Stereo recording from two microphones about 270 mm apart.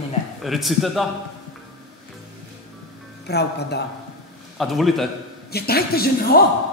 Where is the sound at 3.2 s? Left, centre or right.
Left.